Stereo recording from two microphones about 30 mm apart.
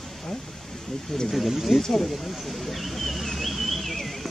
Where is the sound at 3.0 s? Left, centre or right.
Centre.